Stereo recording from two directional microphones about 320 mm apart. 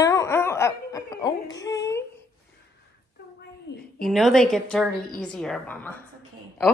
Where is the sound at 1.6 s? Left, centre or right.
Centre.